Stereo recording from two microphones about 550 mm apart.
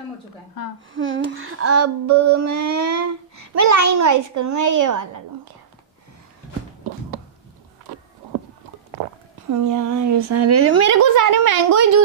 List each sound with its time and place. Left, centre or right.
0.9 s child singing: right
3.3 s a woman's voice: right
9.5 s a woman's voice: right